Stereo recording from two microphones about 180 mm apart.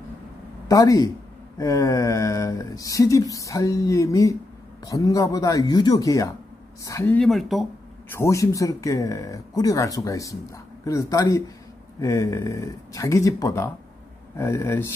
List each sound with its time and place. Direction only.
0.7 s speech: 20° left (ahead or behind); by 7.6 s centre (ahead or behind)
8.1 s speech: 15° left (ahead or behind)